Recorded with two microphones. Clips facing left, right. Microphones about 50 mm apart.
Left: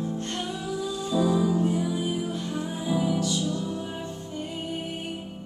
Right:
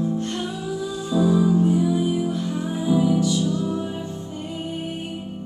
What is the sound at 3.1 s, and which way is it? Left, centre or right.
Music, right.